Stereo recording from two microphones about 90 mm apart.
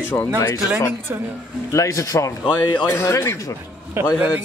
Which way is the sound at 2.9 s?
30° left (ahead or behind).